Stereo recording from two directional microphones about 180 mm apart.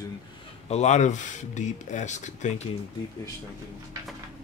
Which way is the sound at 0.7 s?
40° left (ahead or behind).